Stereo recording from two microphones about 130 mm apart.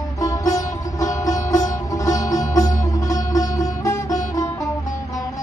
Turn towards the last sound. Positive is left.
turn(degrees=25)  # may be behind; listen again after turning